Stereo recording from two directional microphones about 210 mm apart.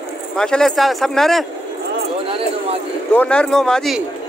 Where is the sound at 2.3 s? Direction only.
25° right (ahead or behind).